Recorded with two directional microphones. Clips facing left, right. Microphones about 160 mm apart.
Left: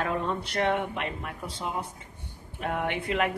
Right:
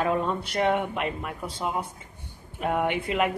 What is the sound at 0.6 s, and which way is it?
Speech, 15° right (ahead or behind).